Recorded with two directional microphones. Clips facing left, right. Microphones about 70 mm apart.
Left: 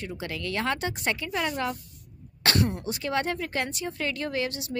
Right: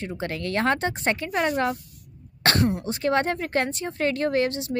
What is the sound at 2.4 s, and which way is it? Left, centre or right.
Throat clearing, right.